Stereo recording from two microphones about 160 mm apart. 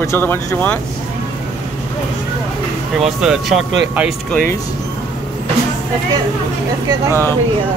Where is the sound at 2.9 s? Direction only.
Centre (ahead or behind).